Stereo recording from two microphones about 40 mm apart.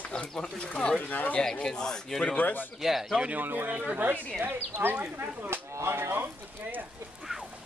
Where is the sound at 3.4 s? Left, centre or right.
Right.